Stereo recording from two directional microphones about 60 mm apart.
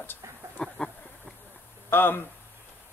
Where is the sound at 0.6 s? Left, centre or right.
Centre.